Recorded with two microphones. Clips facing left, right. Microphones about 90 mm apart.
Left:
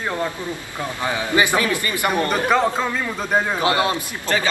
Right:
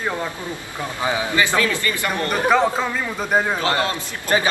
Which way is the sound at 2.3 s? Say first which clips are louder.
Right 5 dB; centre (ahead or behind).